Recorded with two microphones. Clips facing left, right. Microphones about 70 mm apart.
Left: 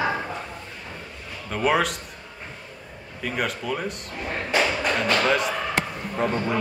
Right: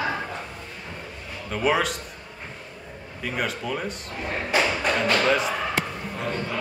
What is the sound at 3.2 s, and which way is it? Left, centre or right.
Speech, centre.